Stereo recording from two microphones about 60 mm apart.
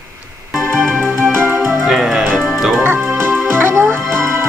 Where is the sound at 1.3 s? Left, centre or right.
Right.